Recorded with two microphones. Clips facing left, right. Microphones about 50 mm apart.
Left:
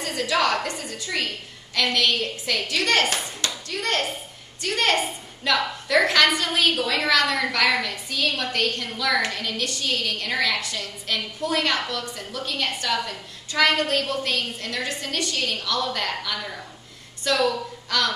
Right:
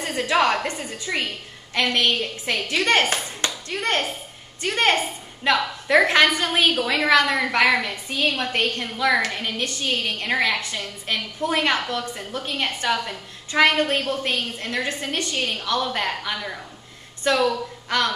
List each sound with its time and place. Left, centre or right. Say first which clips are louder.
0.0 s a woman's voice: right 2 dB; right